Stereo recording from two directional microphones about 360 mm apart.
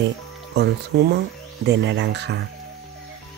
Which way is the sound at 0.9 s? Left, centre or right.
Right.